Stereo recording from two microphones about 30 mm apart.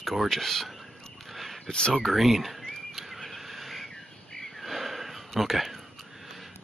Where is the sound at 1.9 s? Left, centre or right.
Centre.